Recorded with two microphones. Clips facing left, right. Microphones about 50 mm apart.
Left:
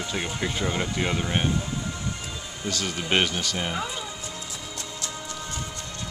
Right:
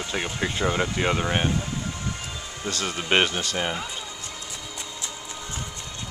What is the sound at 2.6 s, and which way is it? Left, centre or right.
Speech, right.